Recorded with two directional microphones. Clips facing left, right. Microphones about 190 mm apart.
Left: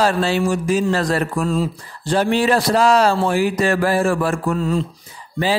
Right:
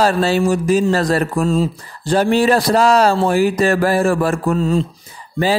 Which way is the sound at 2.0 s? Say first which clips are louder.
Right 3 dB; 40° right (ahead or behind).